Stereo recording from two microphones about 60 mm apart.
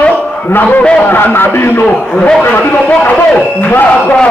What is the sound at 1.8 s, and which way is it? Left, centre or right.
Speech, centre.